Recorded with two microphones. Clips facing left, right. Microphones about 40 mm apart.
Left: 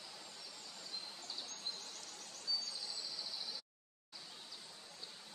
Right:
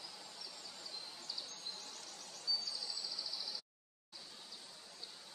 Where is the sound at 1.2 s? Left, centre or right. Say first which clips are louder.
Left 1 dB; left.